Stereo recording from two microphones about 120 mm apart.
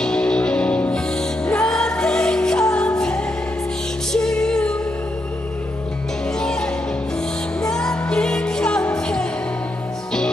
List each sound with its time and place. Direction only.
0.0 s music: 5° left (ahead or behind)
4.1 s music: 5° left (ahead or behind)
7.6 s music: 5° left (ahead or behind)